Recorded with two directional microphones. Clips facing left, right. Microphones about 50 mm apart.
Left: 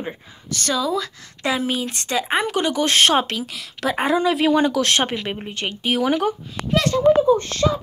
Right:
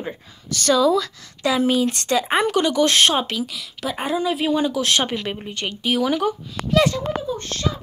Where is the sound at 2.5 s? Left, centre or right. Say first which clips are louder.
Right 1 dB; left.